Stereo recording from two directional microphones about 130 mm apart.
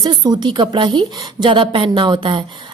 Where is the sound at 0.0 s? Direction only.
35° right (ahead or behind).